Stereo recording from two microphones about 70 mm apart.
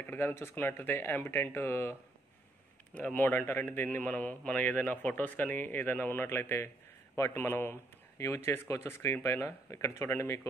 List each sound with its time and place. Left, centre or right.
0.0 s speech: left
2.9 s a man's voice: left
4.0 s a man's voice: centre; by 10.4 s left